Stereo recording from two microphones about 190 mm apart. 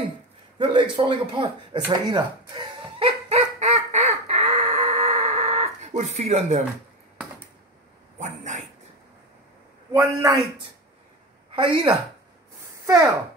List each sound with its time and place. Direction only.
0.6 s a sound: 25° right (ahead or behind)
8.2 s dog: 40° right (ahead or behind)
9.9 s a man's voice: 15° right (ahead or behind)
11.5 s a child's voice: 25° right (ahead or behind)